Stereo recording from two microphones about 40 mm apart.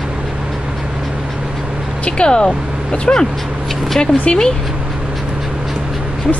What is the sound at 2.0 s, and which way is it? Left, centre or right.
Speech, left.